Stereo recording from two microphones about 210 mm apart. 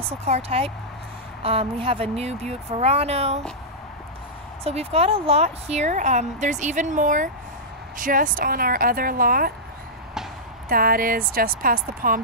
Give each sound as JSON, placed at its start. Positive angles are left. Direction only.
{"t": 0.0, "sound": "speech", "side_deg": -30}
{"t": 4.6, "sound": "a woman's voice", "side_deg": -30}
{"t": 10.7, "sound": "a woman's voice", "side_deg": -45}